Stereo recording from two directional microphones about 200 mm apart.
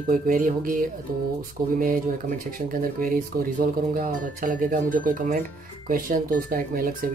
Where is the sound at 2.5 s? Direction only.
45° right (ahead or behind).